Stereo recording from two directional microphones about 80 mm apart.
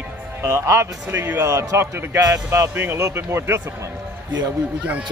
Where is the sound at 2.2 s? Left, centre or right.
Right.